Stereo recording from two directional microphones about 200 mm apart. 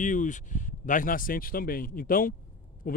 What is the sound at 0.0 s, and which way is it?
Speech, 40° left (ahead or behind).